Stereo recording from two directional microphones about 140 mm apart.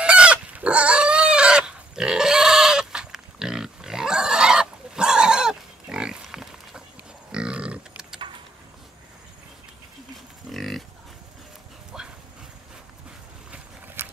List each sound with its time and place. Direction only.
0.0 s chicken: 10° right (ahead or behind)
7.3 s pig: 5° right (ahead or behind)
10.5 s livestock: centre (ahead or behind)
11.9 s dog: 5° right (ahead or behind)
14.0 s a sound: 15° right (ahead or behind)